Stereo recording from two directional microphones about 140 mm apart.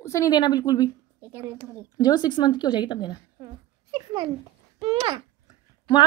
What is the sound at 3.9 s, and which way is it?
A child's voice, 35° right (ahead or behind).